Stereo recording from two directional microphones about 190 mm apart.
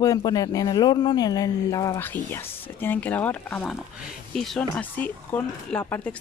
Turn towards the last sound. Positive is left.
turn(degrees=10)  # may be behind; listen again after turning